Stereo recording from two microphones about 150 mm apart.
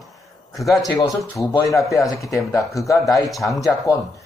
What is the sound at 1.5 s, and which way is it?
Speech, 20° left (ahead or behind).